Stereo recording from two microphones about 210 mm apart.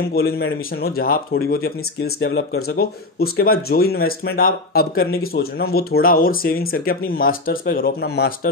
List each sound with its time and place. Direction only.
0.1 s speech: 50° left (ahead or behind)